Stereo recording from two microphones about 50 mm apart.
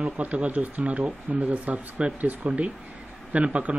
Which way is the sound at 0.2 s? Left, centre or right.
Right.